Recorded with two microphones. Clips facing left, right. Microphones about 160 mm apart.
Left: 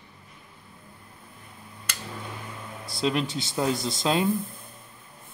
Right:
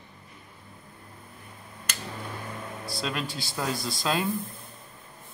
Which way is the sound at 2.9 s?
25° left (ahead or behind).